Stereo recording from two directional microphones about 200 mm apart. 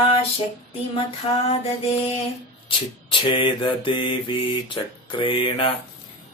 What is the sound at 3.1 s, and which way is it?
Speech, 25° left (ahead or behind).